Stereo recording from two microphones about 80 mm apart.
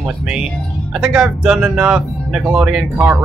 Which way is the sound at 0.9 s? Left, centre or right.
Centre.